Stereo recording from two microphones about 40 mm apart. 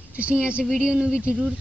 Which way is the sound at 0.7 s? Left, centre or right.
Centre.